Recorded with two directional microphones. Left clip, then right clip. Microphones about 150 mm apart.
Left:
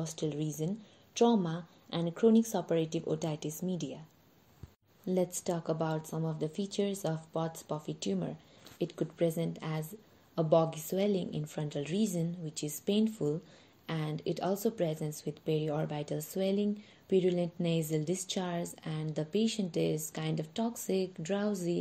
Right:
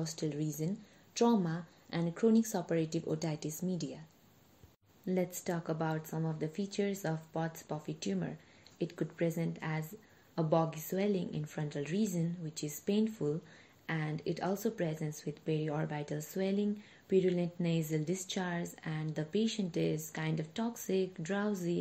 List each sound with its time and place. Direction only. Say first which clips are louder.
0.0 s speech: left 2 dB; 25° left (ahead or behind)
5.0 s speech: left 3 dB; 30° left (ahead or behind)